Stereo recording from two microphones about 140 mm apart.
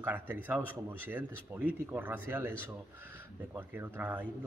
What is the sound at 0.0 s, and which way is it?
Speech, 15° right (ahead or behind).